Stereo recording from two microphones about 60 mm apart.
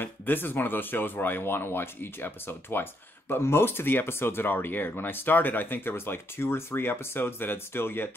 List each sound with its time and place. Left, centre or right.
0.0 s speech: left